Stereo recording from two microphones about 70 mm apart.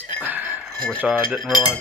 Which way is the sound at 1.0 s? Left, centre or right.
Centre.